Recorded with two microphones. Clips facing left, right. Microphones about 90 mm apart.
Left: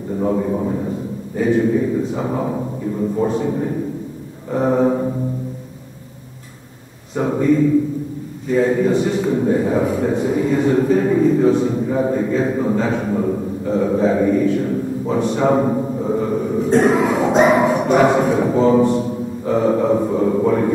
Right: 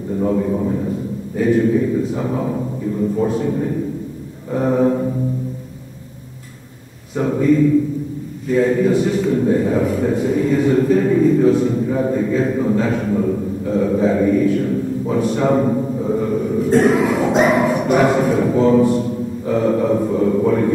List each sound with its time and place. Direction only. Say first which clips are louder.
0.2 s a man's voice: right 1 dB; 10° left (ahead or behind)
7.2 s a man's voice: right 1 dB; 5° left (ahead or behind)
13.1 s a man's voice: right 1 dB; 15° left (ahead or behind)
15.6 s a sound: right 1 dB; 20° left (ahead or behind)
16.2 s burping: even; 5° left (ahead or behind)